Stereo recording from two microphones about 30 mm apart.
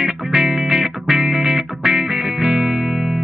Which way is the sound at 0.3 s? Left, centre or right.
Right.